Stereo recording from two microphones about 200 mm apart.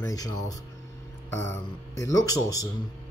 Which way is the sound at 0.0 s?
15° left (ahead or behind).